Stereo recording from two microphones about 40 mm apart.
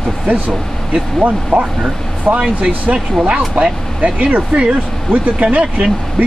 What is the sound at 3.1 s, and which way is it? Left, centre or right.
Speech, right.